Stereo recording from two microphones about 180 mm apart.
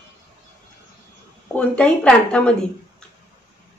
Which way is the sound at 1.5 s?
10° left (ahead or behind).